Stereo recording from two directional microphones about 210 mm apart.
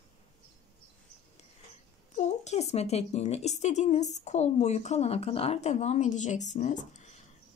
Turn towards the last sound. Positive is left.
turn(degrees=35)  # may be behind; listen again after turning